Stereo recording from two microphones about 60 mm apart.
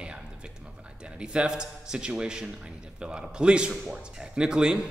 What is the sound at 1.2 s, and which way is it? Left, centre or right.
Speech, centre.